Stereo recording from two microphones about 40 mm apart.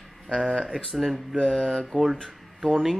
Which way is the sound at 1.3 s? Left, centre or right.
Centre.